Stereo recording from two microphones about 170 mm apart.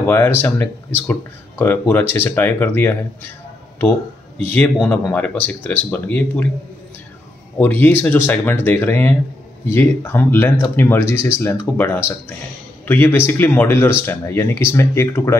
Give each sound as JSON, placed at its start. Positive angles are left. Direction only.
{"t": 0.0, "sound": "speech", "side_deg": 10}
{"t": 4.8, "sound": "speech", "side_deg": 10}
{"t": 7.5, "sound": "a man's voice", "side_deg": 10}